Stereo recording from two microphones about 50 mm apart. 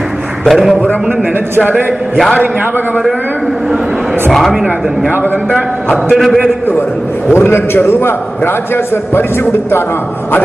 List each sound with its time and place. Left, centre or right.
0.5 s a man's voice: centre
4.3 s a man's voice: centre
6.1 s a man's voice: centre
7.3 s a man's voice: left